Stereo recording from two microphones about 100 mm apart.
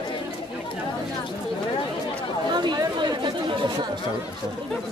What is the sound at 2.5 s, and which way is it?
Chatter, 50° right (ahead or behind).